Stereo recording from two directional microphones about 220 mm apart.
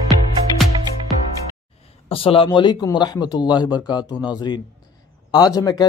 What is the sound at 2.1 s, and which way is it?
Speech, 25° left (ahead or behind).